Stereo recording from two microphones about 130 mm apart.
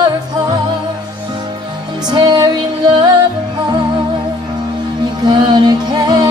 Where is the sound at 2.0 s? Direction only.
35° right (ahead or behind).